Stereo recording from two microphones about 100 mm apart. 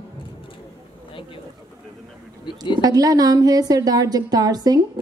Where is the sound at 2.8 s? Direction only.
40° right (ahead or behind).